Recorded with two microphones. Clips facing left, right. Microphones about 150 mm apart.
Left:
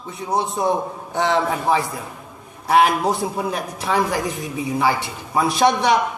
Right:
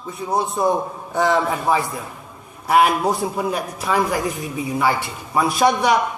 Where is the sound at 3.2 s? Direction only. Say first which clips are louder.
Right 1 dB; 25° left (ahead or behind).